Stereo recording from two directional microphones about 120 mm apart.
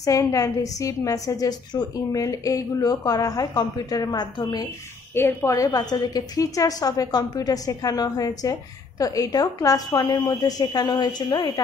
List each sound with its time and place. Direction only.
0.0 s a woman's voice: 30° left (ahead or behind)
5.1 s a woman's voice: 20° left (ahead or behind)